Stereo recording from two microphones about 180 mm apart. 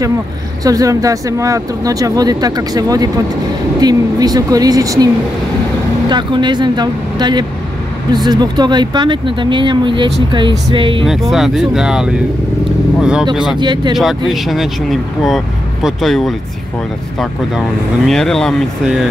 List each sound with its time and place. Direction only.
0.7 s speech: 20° right (ahead or behind)
11.1 s speech: centre (ahead or behind)
13.6 s speech: 25° right (ahead or behind)
13.9 s speech: centre (ahead or behind)
18.0 s speech: centre (ahead or behind)